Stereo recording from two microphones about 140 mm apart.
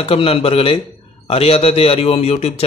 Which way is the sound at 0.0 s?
45° left (ahead or behind).